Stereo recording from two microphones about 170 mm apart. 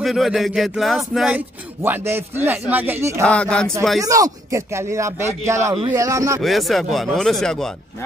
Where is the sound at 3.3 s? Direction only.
5° left (ahead or behind).